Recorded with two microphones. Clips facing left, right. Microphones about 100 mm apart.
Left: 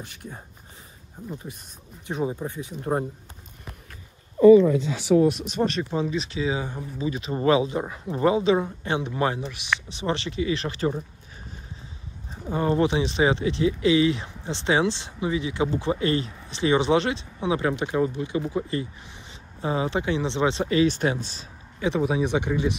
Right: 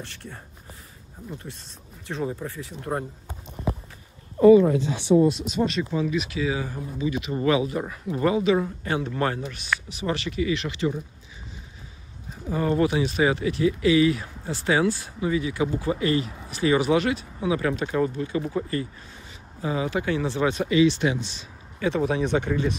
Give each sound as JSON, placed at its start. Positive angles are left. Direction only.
{"t": 0.0, "sound": "speech", "side_deg": 15}
{"t": 2.0, "sound": "speech", "side_deg": 20}
{"t": 5.3, "sound": "speech", "side_deg": 45}
{"t": 9.8, "sound": "speech", "side_deg": 30}
{"t": 12.4, "sound": "speech", "side_deg": 25}
{"t": 20.6, "sound": "speech", "side_deg": 40}
{"t": 21.7, "sound": "speech", "side_deg": 15}